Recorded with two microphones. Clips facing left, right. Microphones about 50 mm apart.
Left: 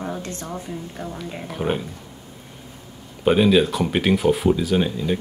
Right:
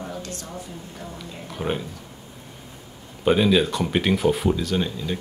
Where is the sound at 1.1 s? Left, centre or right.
Centre.